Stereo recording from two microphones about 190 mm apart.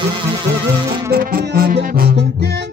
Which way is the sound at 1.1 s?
50° right (ahead or behind).